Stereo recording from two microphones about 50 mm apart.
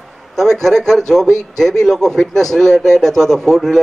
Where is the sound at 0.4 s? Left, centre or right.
Centre.